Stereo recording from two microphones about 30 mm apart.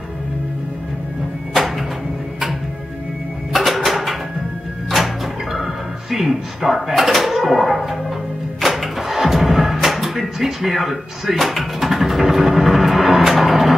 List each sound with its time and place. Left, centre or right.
1.5 s music: centre
3.5 s a sound: centre
4.9 s music: centre
7.0 s speech: centre
8.5 s music: centre